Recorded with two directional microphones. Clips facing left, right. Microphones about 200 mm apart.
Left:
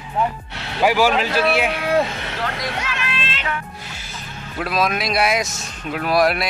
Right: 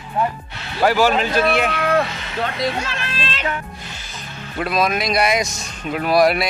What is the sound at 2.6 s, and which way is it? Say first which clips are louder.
Children playing: right 4 dB; 30° right (ahead or behind).